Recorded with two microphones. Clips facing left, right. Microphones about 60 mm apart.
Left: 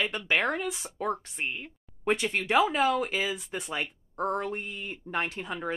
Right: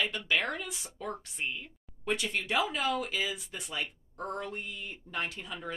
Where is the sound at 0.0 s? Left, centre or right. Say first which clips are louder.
Left 3 dB; left.